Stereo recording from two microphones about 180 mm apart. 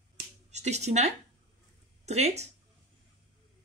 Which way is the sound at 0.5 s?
40° right (ahead or behind).